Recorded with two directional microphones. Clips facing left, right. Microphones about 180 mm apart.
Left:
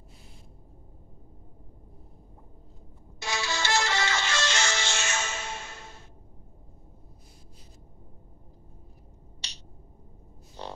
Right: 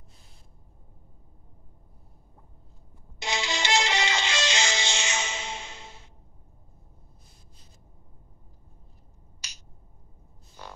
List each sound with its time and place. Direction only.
3.2 s music: 20° right (ahead or behind)
9.4 s finger snapping: 35° left (ahead or behind)
10.6 s music: 30° left (ahead or behind)